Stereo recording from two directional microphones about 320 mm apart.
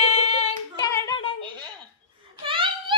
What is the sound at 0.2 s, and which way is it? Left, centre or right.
Singing, centre.